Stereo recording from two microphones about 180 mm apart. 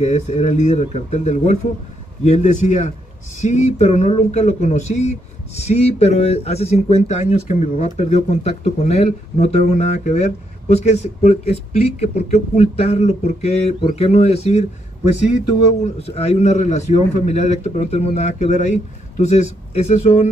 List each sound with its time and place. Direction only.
0.0 s speech: 40° left (ahead or behind)
15.8 s speech: 35° left (ahead or behind)